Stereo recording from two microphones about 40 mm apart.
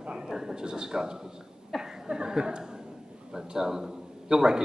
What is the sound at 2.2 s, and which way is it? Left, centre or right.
A man's voice, centre.